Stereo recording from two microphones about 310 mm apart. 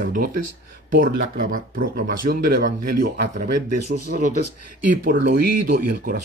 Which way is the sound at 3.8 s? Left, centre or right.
Right.